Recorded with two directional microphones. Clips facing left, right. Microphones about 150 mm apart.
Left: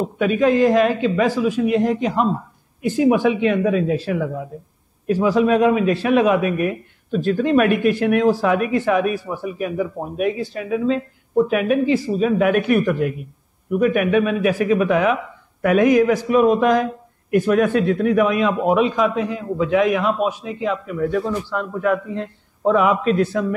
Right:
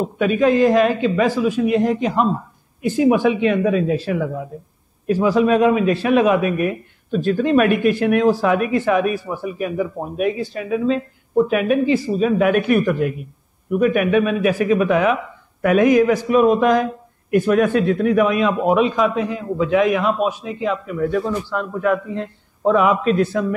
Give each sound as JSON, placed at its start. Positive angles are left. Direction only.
{"t": 0.0, "sound": "a man's voice", "side_deg": -20}